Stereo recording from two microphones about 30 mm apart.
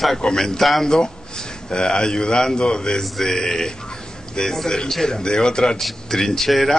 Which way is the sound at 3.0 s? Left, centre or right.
Centre.